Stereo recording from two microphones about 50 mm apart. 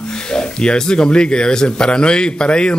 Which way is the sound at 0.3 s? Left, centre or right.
Centre.